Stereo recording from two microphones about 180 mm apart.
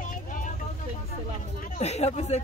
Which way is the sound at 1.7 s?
35° left (ahead or behind).